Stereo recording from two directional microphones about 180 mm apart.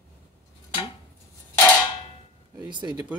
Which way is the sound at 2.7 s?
25° right (ahead or behind).